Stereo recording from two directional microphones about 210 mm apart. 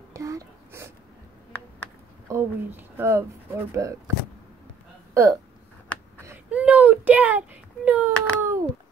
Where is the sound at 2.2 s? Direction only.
10° right (ahead or behind).